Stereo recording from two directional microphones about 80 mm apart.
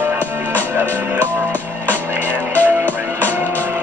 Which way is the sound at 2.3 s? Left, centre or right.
Right.